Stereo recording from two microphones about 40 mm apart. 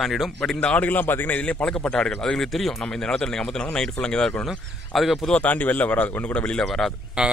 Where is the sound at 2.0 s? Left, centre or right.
Centre.